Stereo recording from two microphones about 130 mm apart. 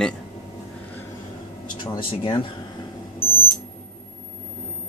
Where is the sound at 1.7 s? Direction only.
40° left (ahead or behind).